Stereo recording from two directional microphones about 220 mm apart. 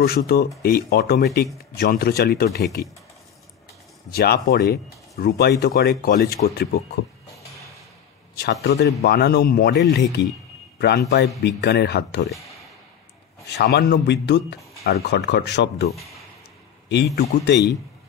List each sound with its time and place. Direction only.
0.0 s speech: 45° left (ahead or behind)
4.1 s speech: 45° left (ahead or behind)
8.4 s speech: 50° left (ahead or behind)
13.5 s speech: 50° left (ahead or behind)
15.9 s speech: centre (ahead or behind)
16.9 s speech: 50° left (ahead or behind)